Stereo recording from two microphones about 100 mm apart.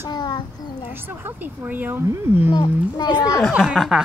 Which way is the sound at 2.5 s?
45° left (ahead or behind).